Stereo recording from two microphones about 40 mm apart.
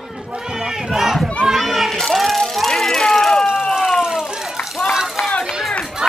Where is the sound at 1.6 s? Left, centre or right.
Centre.